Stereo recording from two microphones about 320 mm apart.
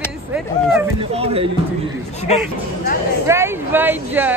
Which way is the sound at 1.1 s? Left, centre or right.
Centre.